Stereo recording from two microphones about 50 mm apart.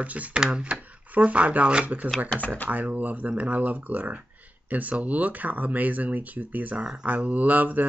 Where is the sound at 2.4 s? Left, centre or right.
Left.